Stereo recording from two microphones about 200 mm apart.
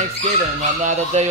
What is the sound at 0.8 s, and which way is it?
Speech, 35° right (ahead or behind).